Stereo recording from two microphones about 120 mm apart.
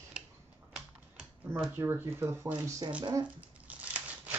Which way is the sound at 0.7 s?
5° right (ahead or behind).